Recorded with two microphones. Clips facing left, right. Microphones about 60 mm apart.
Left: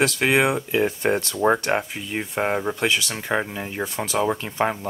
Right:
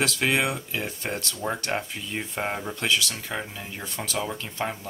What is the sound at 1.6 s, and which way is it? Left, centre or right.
Speech, left.